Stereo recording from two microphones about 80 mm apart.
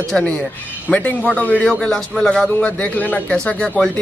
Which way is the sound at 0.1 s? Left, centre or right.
Centre.